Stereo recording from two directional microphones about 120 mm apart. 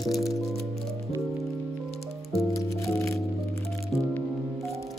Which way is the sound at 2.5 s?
25° left (ahead or behind).